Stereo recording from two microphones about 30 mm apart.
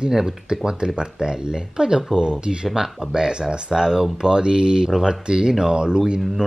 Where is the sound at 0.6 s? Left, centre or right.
Right.